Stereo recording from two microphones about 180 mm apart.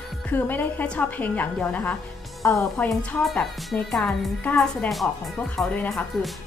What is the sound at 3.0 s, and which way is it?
A woman's voice, 5° left (ahead or behind).